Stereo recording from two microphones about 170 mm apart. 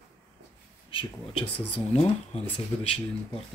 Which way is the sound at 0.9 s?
30° left (ahead or behind).